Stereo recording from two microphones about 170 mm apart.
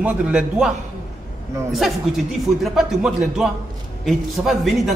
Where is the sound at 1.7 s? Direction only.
Centre (ahead or behind).